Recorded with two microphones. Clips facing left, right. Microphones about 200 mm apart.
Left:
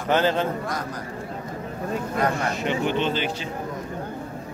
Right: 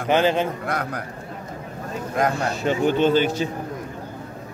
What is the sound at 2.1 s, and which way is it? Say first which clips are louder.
A man's voice: right 4 dB; 35° right (ahead or behind).